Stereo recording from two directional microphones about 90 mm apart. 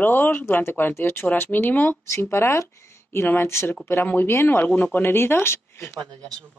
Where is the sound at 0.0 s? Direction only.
20° left (ahead or behind).